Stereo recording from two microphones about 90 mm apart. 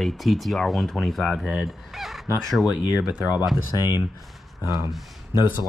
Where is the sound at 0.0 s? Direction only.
Centre (ahead or behind).